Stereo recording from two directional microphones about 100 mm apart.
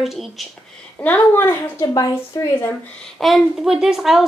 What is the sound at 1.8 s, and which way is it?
Speech, 40° left (ahead or behind).